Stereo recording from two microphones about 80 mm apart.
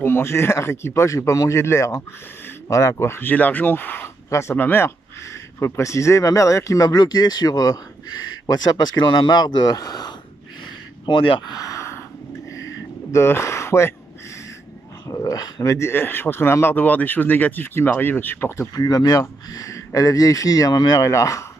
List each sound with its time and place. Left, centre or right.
0.0 s speech: left
4.3 s speech: left
11.1 s speech: left
11.6 s a sound: left
13.1 s speech: left
15.0 s speech: left
15.9 s speech: left
18.8 s speech: left